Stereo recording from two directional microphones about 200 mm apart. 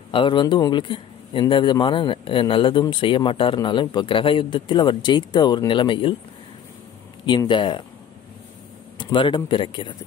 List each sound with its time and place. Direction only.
0.1 s speech: 25° left (ahead or behind)
7.2 s speech: 25° left (ahead or behind)
8.9 s speech: 25° left (ahead or behind)